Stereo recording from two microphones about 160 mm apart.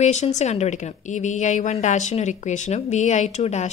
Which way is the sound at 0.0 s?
45° left (ahead or behind).